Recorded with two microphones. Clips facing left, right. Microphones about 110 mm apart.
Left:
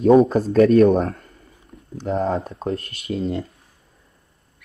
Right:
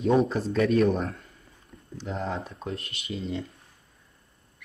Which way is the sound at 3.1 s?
55° left (ahead or behind).